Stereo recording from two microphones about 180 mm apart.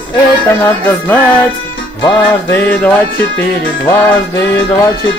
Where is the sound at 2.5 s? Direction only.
10° left (ahead or behind).